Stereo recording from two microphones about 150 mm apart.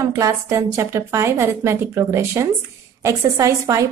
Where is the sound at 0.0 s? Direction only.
20° right (ahead or behind).